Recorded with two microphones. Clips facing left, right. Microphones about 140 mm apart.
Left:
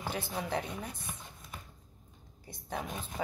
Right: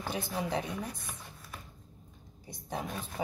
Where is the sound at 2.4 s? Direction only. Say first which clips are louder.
Right 1 dB; 15° right (ahead or behind).